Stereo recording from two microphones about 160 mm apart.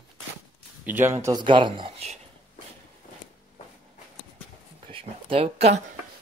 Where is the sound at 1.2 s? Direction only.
30° right (ahead or behind).